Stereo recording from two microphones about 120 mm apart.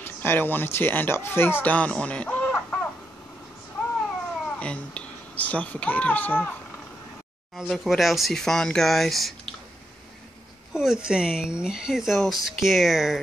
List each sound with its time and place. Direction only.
0.0 s speech: 15° left (ahead or behind)
4.6 s speech: 10° left (ahead or behind)
7.5 s speech: centre (ahead or behind)
10.7 s speech: 5° right (ahead or behind)